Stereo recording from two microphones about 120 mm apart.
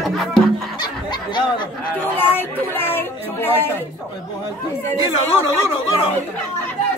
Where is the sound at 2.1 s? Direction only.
15° left (ahead or behind).